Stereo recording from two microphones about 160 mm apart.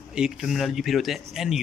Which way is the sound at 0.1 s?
5° right (ahead or behind).